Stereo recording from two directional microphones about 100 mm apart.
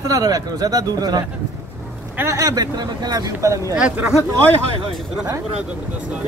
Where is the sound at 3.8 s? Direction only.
10° right (ahead or behind).